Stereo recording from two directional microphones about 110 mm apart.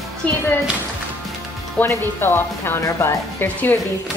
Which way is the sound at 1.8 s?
20° left (ahead or behind).